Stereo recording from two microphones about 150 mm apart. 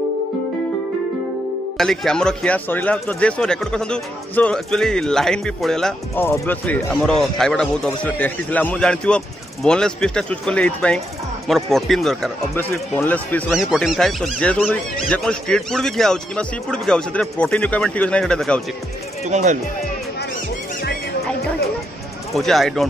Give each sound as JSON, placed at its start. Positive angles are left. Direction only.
{"t": 1.8, "sound": "speech", "side_deg": 5}
{"t": 12.5, "sound": "speech", "side_deg": 15}
{"t": 13.5, "sound": "speech", "side_deg": 0}
{"t": 19.3, "sound": "speech", "side_deg": -55}
{"t": 22.3, "sound": "speech", "side_deg": 0}